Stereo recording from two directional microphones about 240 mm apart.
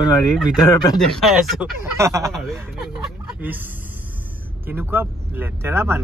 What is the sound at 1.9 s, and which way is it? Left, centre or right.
Speech, centre.